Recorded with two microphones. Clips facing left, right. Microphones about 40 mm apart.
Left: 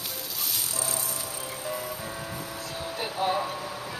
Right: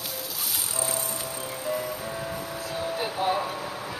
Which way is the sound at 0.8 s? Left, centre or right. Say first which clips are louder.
Right 5 dB; right.